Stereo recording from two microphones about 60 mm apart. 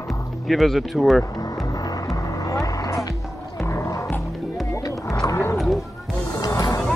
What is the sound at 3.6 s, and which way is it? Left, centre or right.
Music, left.